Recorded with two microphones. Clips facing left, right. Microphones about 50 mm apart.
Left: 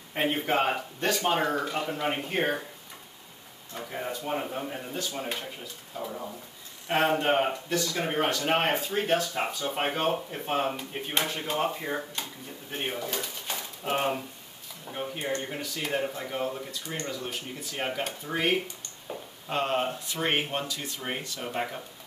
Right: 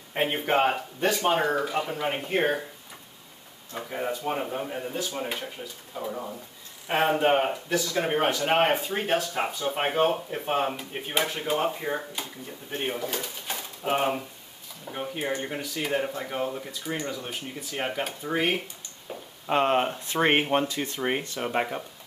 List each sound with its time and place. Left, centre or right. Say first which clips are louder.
0.2 s speech: right 2 dB; centre
3.7 s speech: right 3 dB; centre
19.4 s speech: right 5 dB; right